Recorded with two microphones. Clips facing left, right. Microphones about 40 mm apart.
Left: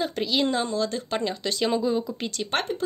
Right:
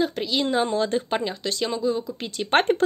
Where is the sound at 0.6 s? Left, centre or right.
Right.